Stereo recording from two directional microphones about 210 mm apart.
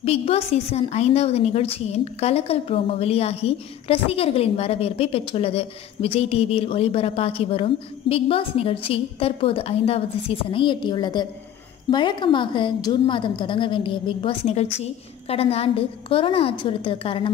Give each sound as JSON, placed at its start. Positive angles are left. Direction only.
{"t": 0.0, "sound": "a woman's voice", "side_deg": 30}